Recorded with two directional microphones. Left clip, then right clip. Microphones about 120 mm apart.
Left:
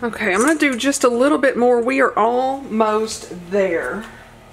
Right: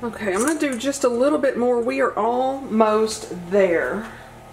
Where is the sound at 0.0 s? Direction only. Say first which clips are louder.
Left 5 dB; 40° left (ahead or behind).